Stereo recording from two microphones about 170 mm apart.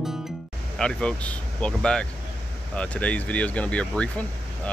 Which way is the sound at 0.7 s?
5° left (ahead or behind).